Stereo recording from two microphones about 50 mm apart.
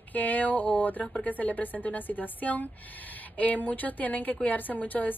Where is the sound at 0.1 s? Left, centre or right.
Left.